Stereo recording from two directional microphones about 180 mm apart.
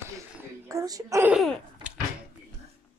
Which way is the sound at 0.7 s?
20° right (ahead or behind).